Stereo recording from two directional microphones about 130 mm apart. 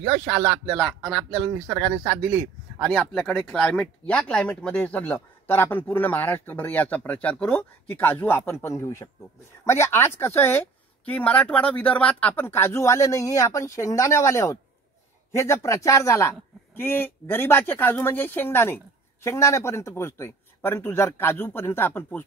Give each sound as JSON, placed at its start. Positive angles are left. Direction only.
{"t": 0.2, "sound": "speech", "side_deg": -15}
{"t": 0.7, "sound": "speech", "side_deg": 5}
{"t": 2.8, "sound": "speech", "side_deg": 5}